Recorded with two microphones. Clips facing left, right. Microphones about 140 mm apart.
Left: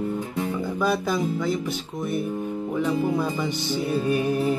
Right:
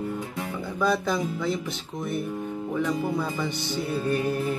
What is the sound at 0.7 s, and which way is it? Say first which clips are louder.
Music: even; 5° left (ahead or behind).